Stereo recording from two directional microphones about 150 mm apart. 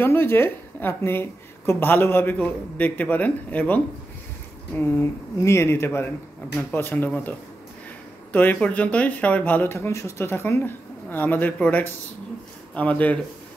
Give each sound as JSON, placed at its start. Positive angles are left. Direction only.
{"t": 0.0, "sound": "a woman's voice", "side_deg": 15}